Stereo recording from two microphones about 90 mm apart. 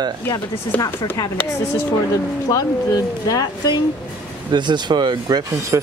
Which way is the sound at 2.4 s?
45° left (ahead or behind).